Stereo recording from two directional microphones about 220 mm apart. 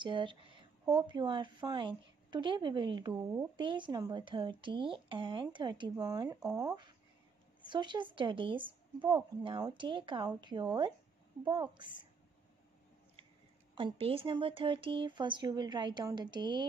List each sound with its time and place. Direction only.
0.0 s speech: 20° right (ahead or behind)
13.7 s speech: 25° right (ahead or behind)